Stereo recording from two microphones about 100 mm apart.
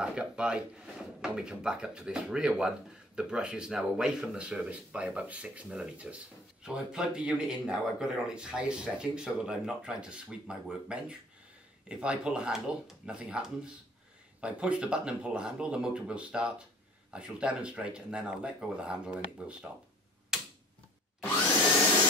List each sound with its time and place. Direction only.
0.0 s speech: 10° right (ahead or behind)
14.4 s speech: 10° right (ahead or behind)
20.3 s tick-tock: 5° right (ahead or behind)